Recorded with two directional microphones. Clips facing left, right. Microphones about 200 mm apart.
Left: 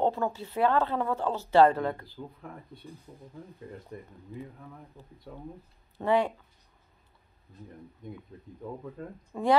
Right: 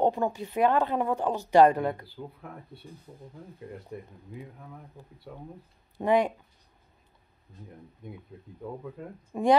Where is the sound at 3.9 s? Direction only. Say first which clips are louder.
Right 1 dB; 5° right (ahead or behind).